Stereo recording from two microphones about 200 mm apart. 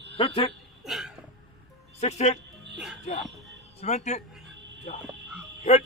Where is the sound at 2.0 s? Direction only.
35° left (ahead or behind).